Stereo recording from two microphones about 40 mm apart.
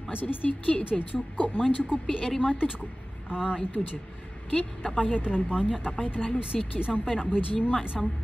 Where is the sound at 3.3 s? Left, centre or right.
Right.